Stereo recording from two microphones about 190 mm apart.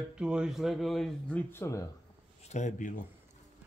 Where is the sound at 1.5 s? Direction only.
15° left (ahead or behind).